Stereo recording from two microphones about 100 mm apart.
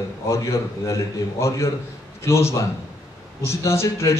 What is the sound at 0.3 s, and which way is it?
A man's voice, 30° left (ahead or behind).